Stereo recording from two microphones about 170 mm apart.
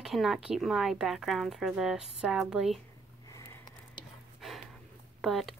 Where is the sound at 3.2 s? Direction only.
20° left (ahead or behind).